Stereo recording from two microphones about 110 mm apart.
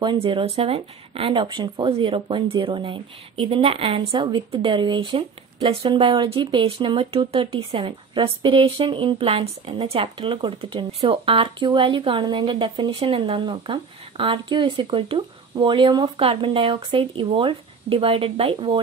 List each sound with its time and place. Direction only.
0.0 s speech: 45° right (ahead or behind)
5.7 s speech: 55° right (ahead or behind)